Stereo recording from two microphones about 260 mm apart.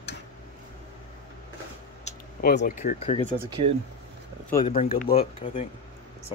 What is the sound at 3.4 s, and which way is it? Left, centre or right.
Speech, centre.